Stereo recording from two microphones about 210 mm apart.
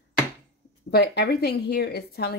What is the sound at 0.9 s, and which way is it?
Speech, 50° left (ahead or behind).